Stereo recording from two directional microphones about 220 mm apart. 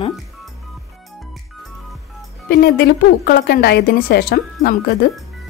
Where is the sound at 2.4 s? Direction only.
45° left (ahead or behind).